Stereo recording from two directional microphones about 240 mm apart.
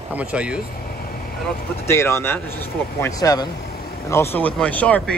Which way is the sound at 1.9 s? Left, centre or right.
Centre.